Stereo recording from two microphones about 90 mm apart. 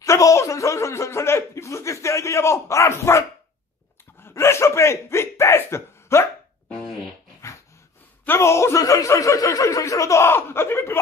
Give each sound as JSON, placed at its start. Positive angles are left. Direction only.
{"t": 0.0, "sound": "speech", "side_deg": 35}
{"t": 4.2, "sound": "chuckle", "side_deg": 30}
{"t": 8.3, "sound": "speech", "side_deg": 30}